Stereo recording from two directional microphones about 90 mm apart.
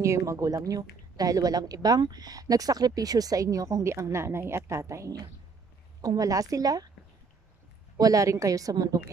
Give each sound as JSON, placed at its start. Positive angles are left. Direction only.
{"t": 0.0, "sound": "a woman's voice", "side_deg": -35}
{"t": 8.0, "sound": "a woman's voice", "side_deg": -40}